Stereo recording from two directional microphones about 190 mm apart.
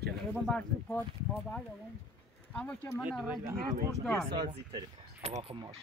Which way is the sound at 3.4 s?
50° right (ahead or behind).